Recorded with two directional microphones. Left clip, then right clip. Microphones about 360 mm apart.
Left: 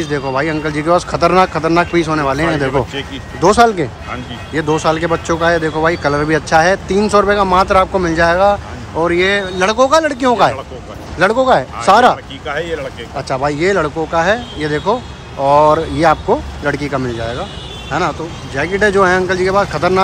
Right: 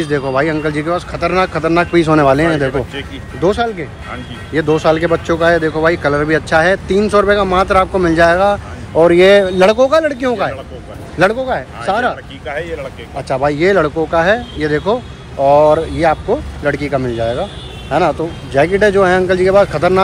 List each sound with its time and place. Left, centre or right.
0.0 s speech: centre
2.7 s speech: left
3.3 s speech: centre
12.4 s speech: left
13.3 s speech: centre